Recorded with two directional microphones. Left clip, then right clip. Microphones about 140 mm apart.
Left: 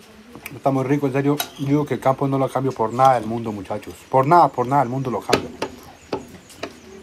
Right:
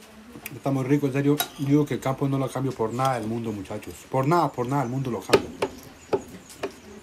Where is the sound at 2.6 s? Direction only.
15° left (ahead or behind).